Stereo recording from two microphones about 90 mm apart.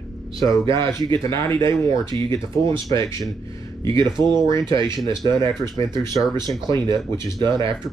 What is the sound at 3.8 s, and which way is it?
Speech, 60° right (ahead or behind).